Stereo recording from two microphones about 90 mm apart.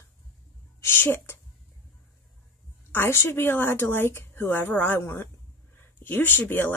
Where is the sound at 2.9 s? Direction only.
25° left (ahead or behind).